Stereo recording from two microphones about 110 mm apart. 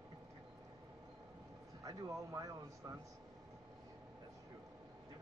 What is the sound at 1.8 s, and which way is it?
Speech, 30° right (ahead or behind).